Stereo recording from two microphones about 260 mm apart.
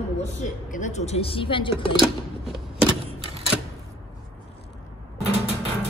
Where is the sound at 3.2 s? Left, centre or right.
Right.